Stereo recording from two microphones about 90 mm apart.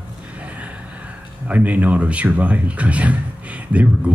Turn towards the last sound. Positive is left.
turn(degrees=-15)  # may be behind; listen again after turning